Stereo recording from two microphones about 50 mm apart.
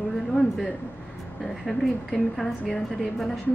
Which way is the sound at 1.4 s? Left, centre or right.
Centre.